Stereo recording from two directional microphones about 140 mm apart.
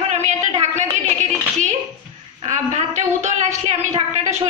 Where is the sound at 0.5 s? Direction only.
55° right (ahead or behind).